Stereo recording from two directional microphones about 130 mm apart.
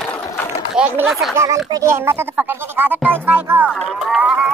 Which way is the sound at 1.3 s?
20° right (ahead or behind).